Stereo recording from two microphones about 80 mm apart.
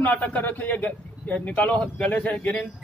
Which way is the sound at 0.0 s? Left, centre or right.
Centre.